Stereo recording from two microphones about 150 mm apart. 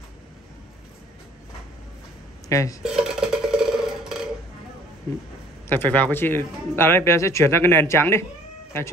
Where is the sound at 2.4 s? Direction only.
20° left (ahead or behind).